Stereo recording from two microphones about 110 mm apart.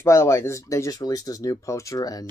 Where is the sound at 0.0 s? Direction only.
25° left (ahead or behind).